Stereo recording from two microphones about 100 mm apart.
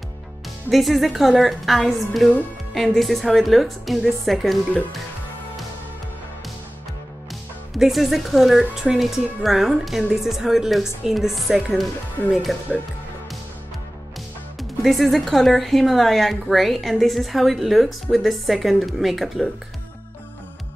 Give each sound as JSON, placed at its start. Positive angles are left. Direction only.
{"t": 0.7, "sound": "speech", "side_deg": 0}
{"t": 7.7, "sound": "speech", "side_deg": 0}
{"t": 14.6, "sound": "speech", "side_deg": 0}